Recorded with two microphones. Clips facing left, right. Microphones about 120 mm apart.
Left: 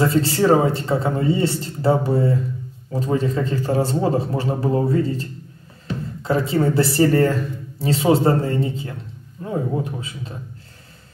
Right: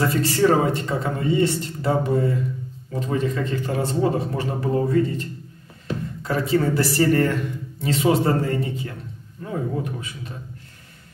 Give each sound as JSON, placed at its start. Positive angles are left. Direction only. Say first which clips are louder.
{"t": 0.0, "sound": "speech", "louder": "left 2 dB", "side_deg": 30}